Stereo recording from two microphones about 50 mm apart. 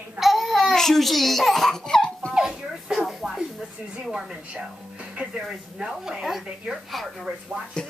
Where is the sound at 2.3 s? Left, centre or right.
Centre.